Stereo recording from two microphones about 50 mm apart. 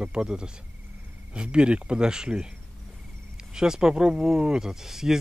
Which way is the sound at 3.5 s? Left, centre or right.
Centre.